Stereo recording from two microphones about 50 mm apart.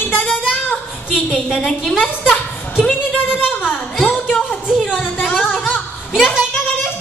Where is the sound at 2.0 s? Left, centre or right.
Left.